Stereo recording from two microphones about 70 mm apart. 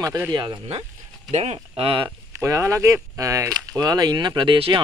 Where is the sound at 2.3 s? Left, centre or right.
Right.